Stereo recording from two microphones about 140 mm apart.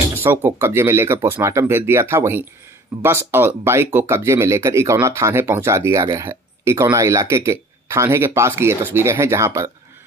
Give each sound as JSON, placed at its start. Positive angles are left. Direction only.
{"t": 0.2, "sound": "speech", "side_deg": -15}